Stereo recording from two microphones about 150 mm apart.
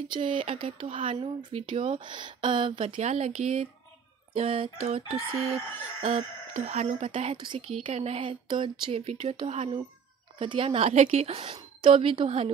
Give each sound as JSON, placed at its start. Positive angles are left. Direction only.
{"t": 0.1, "sound": "a woman's voice", "side_deg": -35}
{"t": 2.9, "sound": "a woman's voice", "side_deg": -50}